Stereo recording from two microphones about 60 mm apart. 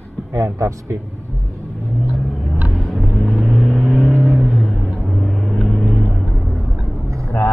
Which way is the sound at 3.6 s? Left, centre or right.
Centre.